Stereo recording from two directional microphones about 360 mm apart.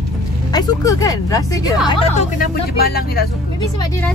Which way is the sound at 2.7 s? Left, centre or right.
Left.